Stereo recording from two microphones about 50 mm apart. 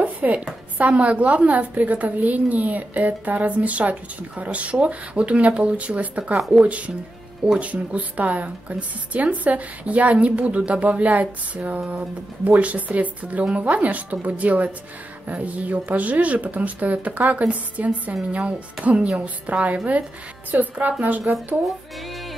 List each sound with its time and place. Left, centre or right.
0.0 s a sound: right
0.7 s a woman's voice: right
6.3 s speech: centre
7.5 s a woman's voice: right